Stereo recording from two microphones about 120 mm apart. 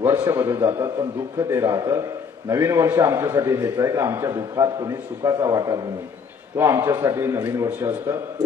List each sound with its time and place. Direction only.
0.0 s a man's voice: 25° right (ahead or behind)